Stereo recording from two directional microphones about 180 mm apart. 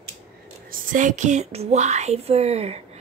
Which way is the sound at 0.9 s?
45° right (ahead or behind).